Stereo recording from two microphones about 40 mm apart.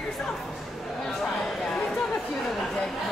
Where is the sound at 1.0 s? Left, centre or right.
Centre.